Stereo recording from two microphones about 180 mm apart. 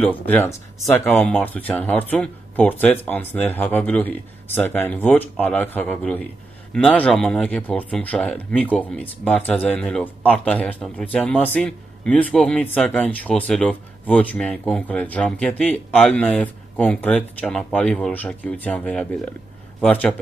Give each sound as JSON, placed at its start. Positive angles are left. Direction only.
{"t": 0.0, "sound": "speech", "side_deg": 10}